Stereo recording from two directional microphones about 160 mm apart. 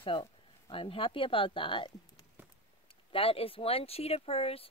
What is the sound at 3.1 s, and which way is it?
Speech, 35° left (ahead or behind).